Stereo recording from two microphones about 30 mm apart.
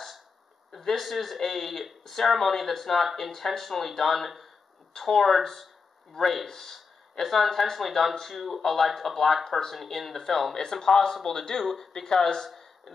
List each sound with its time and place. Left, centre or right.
0.7 s speech: centre
11.6 s speech: centre
11.9 s speech: centre